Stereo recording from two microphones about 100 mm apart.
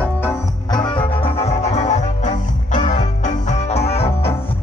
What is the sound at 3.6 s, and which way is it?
Music, 90° left.